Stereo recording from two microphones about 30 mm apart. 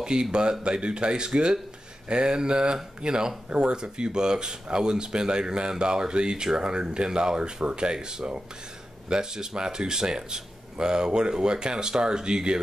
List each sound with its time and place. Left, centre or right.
0.0 s speech: right